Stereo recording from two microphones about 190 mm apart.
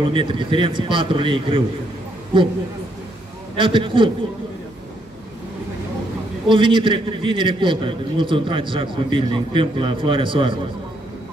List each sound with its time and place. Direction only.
0.0 s a man's voice: 25° right (ahead or behind)
3.5 s a man's voice: 25° right (ahead or behind)
6.5 s a man's voice: 25° right (ahead or behind)